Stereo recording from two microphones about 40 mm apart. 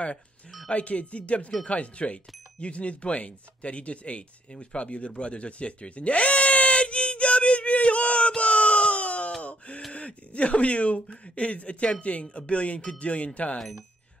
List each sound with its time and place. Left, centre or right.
0.7 s speech: left
8.4 s a sound: left
9.9 s speech: left